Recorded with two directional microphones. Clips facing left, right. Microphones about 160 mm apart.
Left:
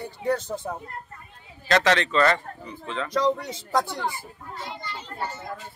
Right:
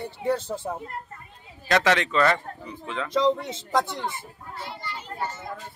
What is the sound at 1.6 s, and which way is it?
Speech, 10° right (ahead or behind).